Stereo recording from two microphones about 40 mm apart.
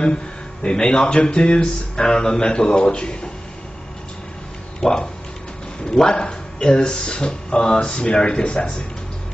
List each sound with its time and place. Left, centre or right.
0.0 s a man's voice: left
4.7 s speech: centre